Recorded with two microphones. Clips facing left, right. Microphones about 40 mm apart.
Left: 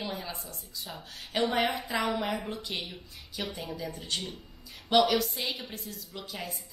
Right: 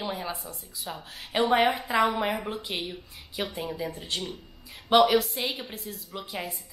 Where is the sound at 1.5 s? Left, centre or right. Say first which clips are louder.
Right 6 dB; right.